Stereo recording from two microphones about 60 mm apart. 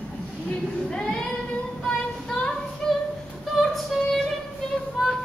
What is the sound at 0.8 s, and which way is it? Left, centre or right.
Child singing, centre.